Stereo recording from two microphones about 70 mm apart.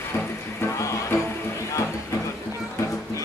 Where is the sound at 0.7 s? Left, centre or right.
Left.